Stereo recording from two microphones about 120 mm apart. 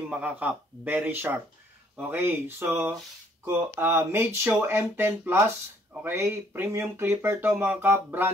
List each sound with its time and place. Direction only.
0.1 s speech: 10° right (ahead or behind)